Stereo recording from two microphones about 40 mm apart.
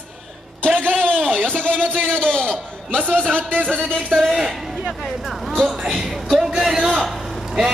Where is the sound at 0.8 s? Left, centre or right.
Right.